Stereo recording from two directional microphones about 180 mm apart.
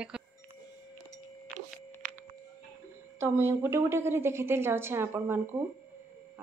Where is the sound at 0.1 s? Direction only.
5° right (ahead or behind).